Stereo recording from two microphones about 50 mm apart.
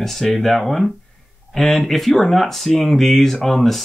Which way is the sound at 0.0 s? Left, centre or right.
Centre.